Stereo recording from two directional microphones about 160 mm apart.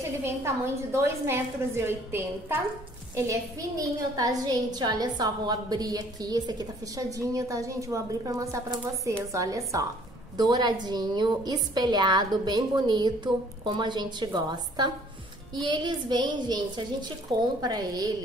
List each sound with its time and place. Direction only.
0.2 s a woman's voice: 15° right (ahead or behind)